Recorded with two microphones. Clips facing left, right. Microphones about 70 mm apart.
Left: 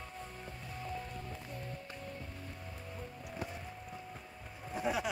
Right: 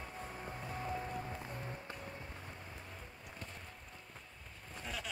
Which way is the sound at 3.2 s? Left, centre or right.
Centre.